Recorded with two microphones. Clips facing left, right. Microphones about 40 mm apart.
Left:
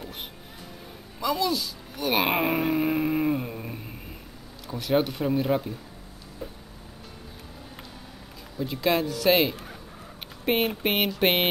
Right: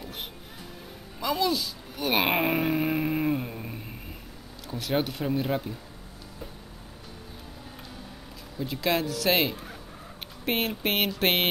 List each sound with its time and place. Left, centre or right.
1.2 s speech: centre
8.5 s speech: centre